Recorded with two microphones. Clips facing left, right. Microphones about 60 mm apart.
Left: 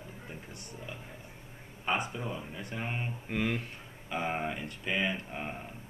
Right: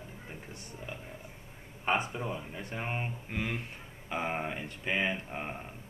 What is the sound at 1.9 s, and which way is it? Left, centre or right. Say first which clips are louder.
Speech: right 2 dB; right.